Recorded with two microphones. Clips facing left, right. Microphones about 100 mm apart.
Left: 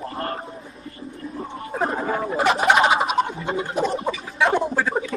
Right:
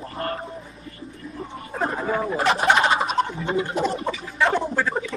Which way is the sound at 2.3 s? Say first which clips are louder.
Left 2 dB; centre (ahead or behind).